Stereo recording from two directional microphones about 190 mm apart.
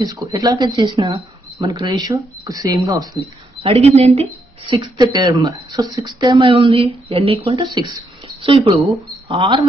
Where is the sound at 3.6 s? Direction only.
35° right (ahead or behind).